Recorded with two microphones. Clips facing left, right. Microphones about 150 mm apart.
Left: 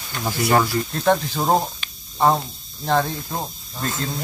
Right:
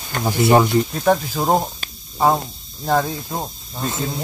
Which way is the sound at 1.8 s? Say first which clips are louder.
Right 3 dB; 40° right (ahead or behind).